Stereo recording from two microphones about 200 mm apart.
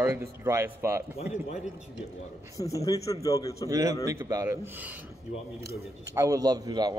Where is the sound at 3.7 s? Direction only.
15° right (ahead or behind).